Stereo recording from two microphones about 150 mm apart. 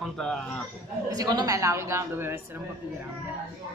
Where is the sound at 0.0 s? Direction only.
Centre (ahead or behind).